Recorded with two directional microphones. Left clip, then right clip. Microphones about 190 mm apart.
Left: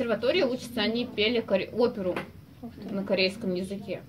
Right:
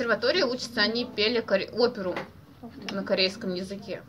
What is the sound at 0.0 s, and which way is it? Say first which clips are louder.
A woman's voice: right 1 dB; 15° left (ahead or behind).